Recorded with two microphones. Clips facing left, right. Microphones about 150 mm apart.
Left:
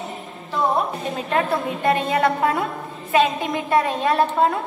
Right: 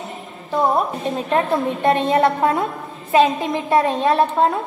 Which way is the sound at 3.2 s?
Centre (ahead or behind).